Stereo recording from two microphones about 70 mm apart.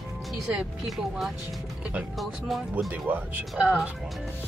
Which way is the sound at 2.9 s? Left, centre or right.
Right.